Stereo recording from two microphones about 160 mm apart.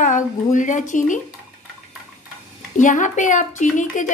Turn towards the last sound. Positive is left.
turn(degrees=50)  # may be behind; listen again after turning